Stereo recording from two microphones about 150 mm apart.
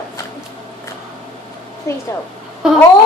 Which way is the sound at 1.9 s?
20° left (ahead or behind).